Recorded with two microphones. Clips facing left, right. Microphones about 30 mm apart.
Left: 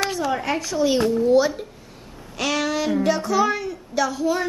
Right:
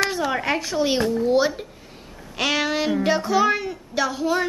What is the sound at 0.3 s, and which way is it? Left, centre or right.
A woman's voice, right.